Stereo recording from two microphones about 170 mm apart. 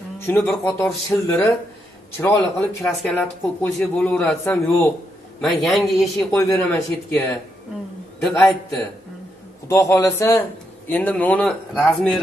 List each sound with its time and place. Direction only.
0.2 s a man's voice: 15° left (ahead or behind)
2.8 s a man's voice: 10° left (ahead or behind)
5.4 s a man's voice: centre (ahead or behind)
6.1 s a man's voice: 15° left (ahead or behind)
8.2 s a man's voice: centre (ahead or behind)
9.7 s a man's voice: 15° left (ahead or behind)